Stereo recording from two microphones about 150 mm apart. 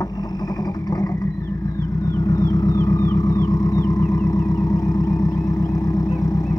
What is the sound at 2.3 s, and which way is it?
Vehicle, 25° left (ahead or behind).